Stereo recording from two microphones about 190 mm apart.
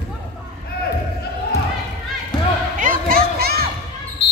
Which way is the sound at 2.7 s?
45° right (ahead or behind).